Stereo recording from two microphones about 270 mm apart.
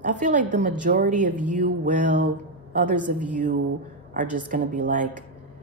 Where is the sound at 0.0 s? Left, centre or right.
Right.